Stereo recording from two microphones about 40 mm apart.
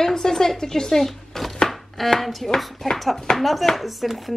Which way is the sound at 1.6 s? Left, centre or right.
Centre.